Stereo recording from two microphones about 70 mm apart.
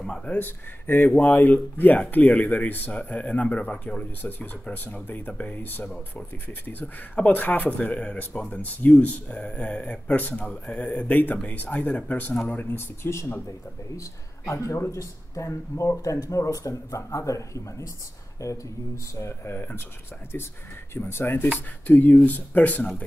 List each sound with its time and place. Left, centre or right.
0.0 s speech: centre
0.4 s speech: left
13.0 s speech: left
20.9 s speech: left